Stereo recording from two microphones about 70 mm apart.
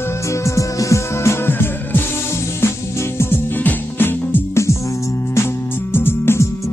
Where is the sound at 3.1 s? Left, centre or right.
Left.